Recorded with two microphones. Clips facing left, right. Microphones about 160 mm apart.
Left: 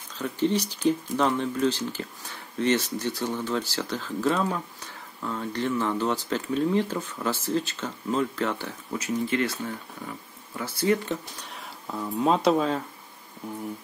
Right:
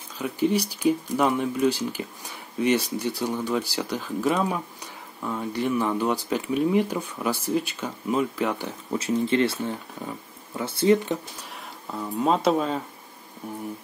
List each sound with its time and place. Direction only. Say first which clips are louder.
0.2 s speech: right 2 dB; 10° right (ahead or behind)
8.9 s speech: right 4 dB; 30° right (ahead or behind)
11.9 s speech: even; centre (ahead or behind)